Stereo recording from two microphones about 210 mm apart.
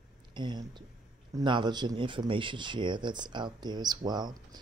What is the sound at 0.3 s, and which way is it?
Speech, 20° right (ahead or behind).